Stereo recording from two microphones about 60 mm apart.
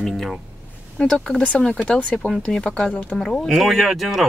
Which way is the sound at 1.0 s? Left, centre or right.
Centre.